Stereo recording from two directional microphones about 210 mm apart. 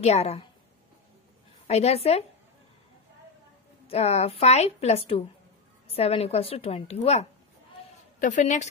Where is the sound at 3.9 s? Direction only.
30° left (ahead or behind).